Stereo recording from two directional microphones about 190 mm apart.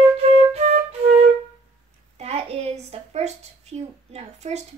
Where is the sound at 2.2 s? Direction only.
35° right (ahead or behind).